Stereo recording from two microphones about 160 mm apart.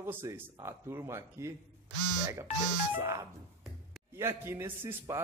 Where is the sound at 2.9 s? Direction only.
15° right (ahead or behind).